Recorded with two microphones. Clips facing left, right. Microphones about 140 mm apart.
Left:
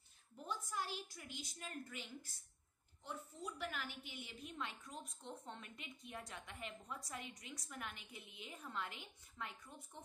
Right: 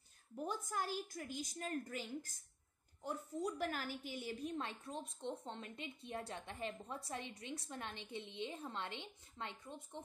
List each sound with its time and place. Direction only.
0.4 s a woman's voice: 50° right (ahead or behind); by 10.0 s 20° right (ahead or behind)